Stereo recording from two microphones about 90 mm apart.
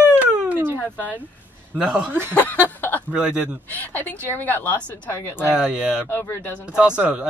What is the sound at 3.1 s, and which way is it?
Speech, 10° right (ahead or behind).